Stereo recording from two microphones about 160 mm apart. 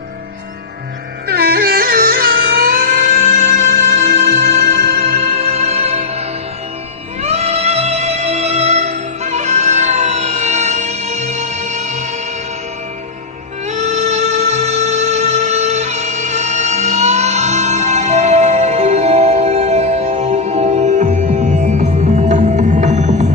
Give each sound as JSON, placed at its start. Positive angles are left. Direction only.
{"t": 1.2, "sound": "music", "side_deg": -75}
{"t": 13.7, "sound": "music", "side_deg": -45}